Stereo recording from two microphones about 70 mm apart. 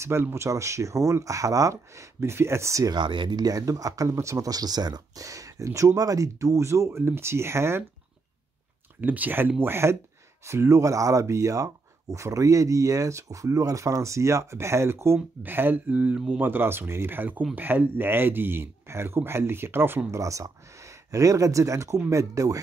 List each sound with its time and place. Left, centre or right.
0.0 s speech: right
2.9 s speech: right
9.0 s speech: right
20.2 s speech: right